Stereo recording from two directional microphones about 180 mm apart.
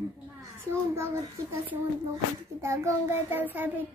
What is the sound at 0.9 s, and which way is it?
Child singing, 15° right (ahead or behind).